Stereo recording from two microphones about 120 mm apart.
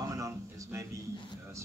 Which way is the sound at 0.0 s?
25° right (ahead or behind).